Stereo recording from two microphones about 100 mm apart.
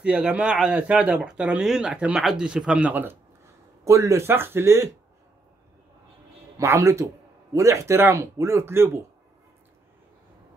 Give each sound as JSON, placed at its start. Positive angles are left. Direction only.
{"t": 0.0, "sound": "speech", "side_deg": -10}
{"t": 3.8, "sound": "speech", "side_deg": -30}
{"t": 6.5, "sound": "speech", "side_deg": -30}